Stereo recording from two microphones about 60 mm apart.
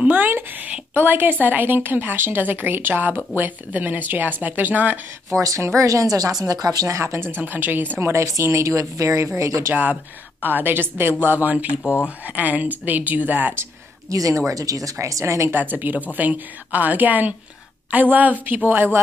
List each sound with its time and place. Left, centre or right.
0.0 s a sound: right
1.4 s a woman's voice: right
5.3 s a woman's voice: right
7.2 s a woman's voice: right
8.1 s a woman's voice: right
10.4 s a woman's voice: right
11.8 s speech: left
12.4 s a woman's voice: right
14.1 s speech: right
15.7 s a woman's voice: right